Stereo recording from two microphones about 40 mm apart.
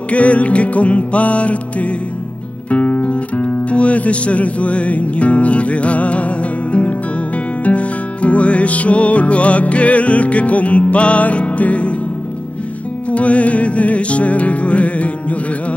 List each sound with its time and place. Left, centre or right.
0.1 s music: left
2.7 s speech: left
7.6 s music: left
13.1 s music: left